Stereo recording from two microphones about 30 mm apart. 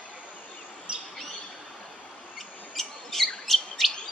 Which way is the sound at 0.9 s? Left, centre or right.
Right.